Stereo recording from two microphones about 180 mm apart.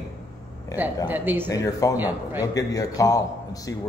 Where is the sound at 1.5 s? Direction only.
20° left (ahead or behind).